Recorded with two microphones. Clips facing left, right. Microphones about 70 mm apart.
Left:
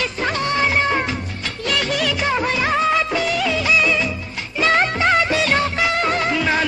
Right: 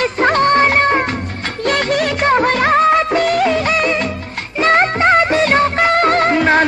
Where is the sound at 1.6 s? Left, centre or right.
Right.